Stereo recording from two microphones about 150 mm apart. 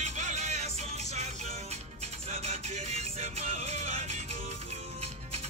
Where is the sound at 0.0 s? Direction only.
50° right (ahead or behind).